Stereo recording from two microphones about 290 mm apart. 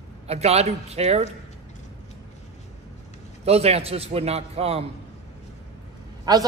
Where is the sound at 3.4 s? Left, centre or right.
Right.